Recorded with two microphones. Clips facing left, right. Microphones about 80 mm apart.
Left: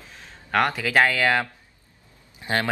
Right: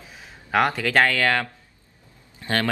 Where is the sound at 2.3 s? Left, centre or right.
Centre.